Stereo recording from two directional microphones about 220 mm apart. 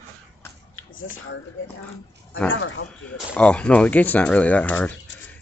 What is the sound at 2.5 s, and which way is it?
Speech, 65° left (ahead or behind).